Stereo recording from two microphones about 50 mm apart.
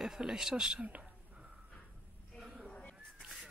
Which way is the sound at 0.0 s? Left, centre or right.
Centre.